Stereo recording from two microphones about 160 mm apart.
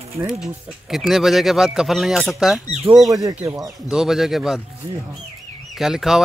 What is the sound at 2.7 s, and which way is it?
Speech, 35° right (ahead or behind).